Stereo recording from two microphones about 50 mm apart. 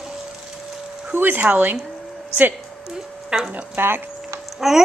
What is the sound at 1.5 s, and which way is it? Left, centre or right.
Speech, right.